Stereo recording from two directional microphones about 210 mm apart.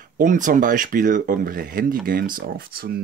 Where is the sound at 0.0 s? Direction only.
40° right (ahead or behind).